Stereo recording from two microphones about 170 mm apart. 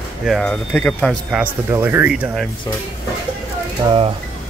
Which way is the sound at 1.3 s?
10° right (ahead or behind).